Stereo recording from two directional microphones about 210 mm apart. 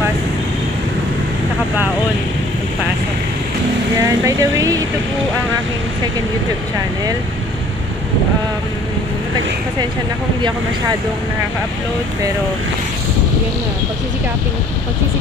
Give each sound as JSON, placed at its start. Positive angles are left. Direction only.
{"t": 4.0, "sound": "speech", "side_deg": -15}